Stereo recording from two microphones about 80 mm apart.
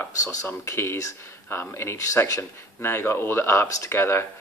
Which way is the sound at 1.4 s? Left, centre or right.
Left.